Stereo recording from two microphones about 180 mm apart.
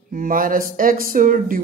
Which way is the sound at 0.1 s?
50° right (ahead or behind).